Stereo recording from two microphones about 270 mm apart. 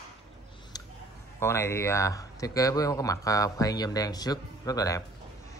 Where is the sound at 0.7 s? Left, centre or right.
Centre.